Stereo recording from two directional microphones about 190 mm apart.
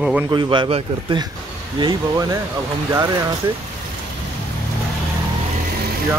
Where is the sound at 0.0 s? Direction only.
5° right (ahead or behind).